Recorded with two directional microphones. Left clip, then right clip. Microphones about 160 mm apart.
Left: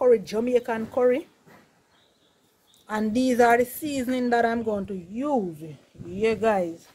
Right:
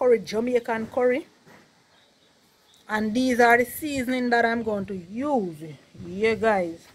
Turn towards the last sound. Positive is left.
turn(degrees=5)  # may be behind; listen again after turning